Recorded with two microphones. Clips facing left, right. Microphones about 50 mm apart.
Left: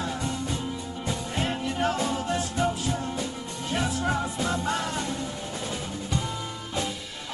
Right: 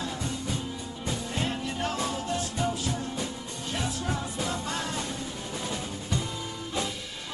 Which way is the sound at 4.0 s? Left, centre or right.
Left.